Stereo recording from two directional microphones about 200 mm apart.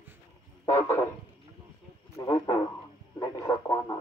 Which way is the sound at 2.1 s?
20° left (ahead or behind).